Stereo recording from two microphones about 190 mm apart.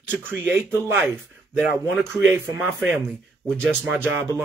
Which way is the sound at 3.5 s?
5° left (ahead or behind).